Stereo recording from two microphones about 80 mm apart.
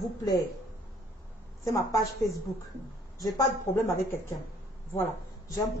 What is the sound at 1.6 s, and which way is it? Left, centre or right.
Speech, left.